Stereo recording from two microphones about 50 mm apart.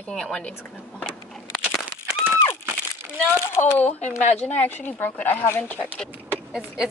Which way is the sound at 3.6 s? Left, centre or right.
Left.